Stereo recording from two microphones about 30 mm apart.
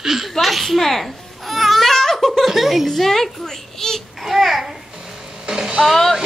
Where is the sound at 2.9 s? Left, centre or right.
Centre.